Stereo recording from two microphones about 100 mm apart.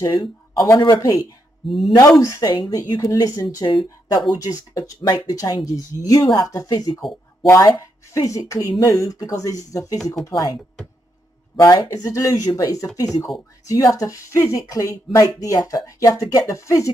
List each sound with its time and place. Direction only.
0.0 s speech: 45° left (ahead or behind)
1.6 s speech: centre (ahead or behind)
2.0 s speech: 35° left (ahead or behind)
5.4 s speech: 35° left (ahead or behind)
11.6 s speech: 40° left (ahead or behind)